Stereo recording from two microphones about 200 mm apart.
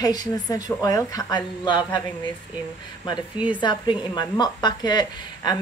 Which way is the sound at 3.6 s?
20° left (ahead or behind).